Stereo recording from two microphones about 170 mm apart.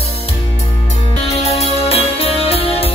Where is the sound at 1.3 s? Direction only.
40° left (ahead or behind).